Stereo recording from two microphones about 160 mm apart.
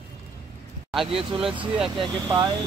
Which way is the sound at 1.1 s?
35° right (ahead or behind).